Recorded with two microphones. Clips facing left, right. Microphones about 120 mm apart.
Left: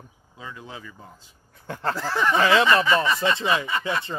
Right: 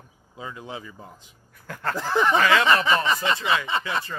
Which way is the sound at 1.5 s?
25° left (ahead or behind).